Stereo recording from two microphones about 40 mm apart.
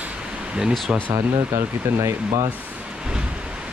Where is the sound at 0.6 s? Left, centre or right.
Centre.